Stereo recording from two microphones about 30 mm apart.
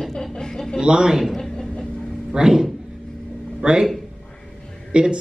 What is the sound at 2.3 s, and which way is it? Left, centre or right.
Speech, right.